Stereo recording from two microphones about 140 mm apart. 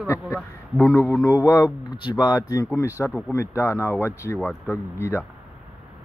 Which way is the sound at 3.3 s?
20° left (ahead or behind).